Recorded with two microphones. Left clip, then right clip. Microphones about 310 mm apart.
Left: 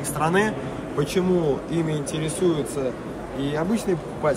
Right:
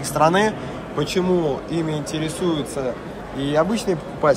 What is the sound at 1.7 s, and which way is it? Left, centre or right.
Speech, centre.